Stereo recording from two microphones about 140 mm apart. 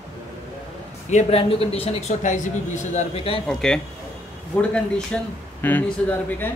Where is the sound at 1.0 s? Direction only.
50° left (ahead or behind).